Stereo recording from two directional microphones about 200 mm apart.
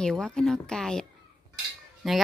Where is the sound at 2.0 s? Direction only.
Centre (ahead or behind).